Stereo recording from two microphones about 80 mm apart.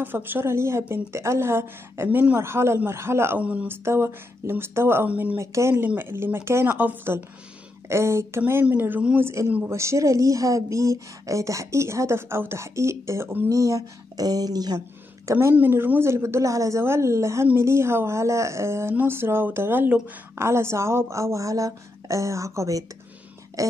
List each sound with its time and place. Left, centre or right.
0.0 s a woman's voice: right
3.3 s speech: centre
3.6 s speech: right
5.4 s a woman's voice: right
7.9 s a woman's voice: right
9.2 s a woman's voice: right
13.5 s speech: right
15.5 s a woman's voice: right